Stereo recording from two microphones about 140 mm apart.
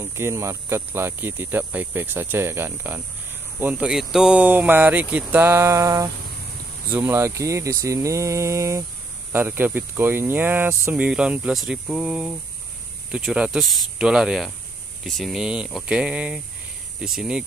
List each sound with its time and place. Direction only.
0.0 s speech: 20° right (ahead or behind)